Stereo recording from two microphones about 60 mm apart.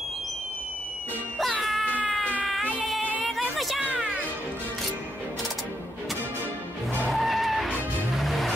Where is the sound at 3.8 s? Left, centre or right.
Right.